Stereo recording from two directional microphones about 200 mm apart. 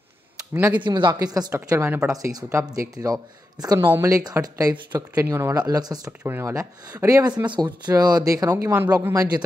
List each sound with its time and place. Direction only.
0.6 s speech: 10° right (ahead or behind)
0.8 s speech: 25° right (ahead or behind)